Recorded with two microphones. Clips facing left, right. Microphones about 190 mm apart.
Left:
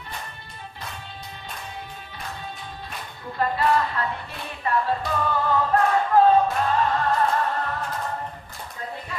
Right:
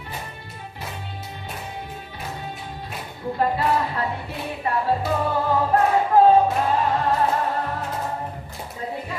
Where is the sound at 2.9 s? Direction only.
15° right (ahead or behind).